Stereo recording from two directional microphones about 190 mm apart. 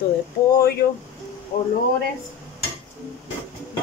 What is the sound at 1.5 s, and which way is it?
Speech, 40° left (ahead or behind).